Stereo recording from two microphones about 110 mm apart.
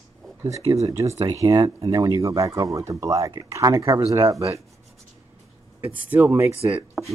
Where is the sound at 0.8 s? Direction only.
30° right (ahead or behind).